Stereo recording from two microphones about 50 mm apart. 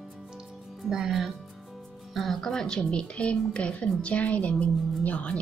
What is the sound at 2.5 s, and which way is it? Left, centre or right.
A woman's voice, centre.